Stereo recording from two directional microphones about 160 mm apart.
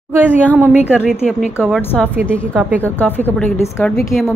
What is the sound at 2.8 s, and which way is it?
A woman's voice, 10° left (ahead or behind).